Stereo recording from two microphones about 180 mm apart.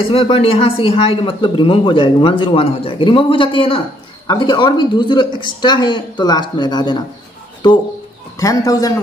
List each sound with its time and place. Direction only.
0.1 s speech: 30° left (ahead or behind)
8.4 s a man's voice: 20° left (ahead or behind)